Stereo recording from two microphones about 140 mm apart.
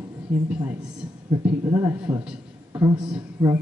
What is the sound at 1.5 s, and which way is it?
A man's voice, 15° right (ahead or behind).